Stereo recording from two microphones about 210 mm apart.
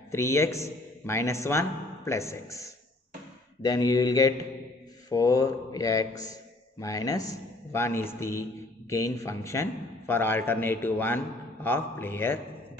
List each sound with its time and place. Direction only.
0.1 s a man's voice: 15° left (ahead or behind)